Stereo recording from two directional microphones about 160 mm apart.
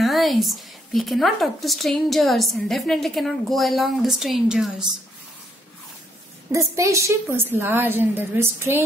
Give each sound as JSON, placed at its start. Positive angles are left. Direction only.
{"t": 0.0, "sound": "a woman's voice", "side_deg": 0}
{"t": 6.5, "sound": "a woman's voice", "side_deg": -20}